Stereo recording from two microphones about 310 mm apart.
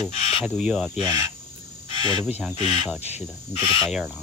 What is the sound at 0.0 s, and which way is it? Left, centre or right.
Cricket, centre.